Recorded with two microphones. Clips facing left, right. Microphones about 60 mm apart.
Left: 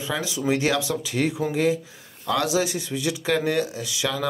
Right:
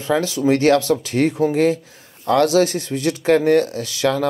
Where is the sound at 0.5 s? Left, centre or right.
Centre.